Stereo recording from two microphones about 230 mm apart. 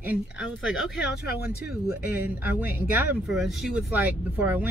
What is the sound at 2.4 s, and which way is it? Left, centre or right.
Speech, centre.